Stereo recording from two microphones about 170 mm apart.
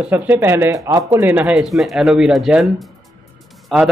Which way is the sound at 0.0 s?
10° right (ahead or behind).